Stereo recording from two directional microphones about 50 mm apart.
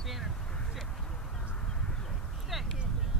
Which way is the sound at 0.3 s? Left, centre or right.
Centre.